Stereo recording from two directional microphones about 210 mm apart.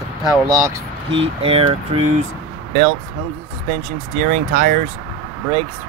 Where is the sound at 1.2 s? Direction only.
25° right (ahead or behind).